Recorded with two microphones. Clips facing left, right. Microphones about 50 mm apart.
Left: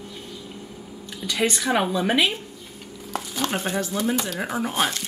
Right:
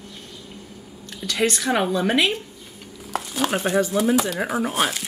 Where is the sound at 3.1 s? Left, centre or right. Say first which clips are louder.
Right 3 dB; centre.